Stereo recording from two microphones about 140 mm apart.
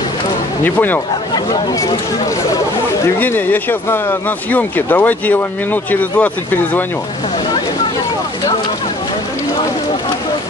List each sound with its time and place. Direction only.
0.7 s speech: 15° left (ahead or behind)
1.3 s speech: 30° left (ahead or behind)
3.2 s speech: 15° left (ahead or behind)